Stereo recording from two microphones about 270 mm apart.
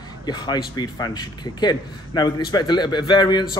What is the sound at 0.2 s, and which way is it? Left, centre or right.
A man's voice, centre.